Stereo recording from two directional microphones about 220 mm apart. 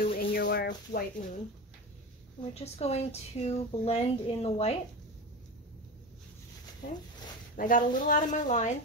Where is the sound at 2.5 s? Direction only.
30° left (ahead or behind).